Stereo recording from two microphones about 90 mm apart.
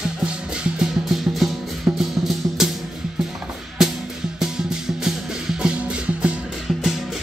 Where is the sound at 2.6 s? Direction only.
5° right (ahead or behind).